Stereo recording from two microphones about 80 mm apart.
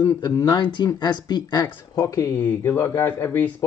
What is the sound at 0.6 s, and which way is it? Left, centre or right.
Speech, left.